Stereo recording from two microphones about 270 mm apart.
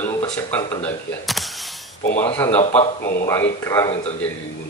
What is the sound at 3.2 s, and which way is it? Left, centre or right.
Speech, centre.